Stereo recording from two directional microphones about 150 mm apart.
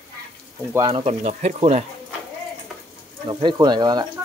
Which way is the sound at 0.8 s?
40° right (ahead or behind).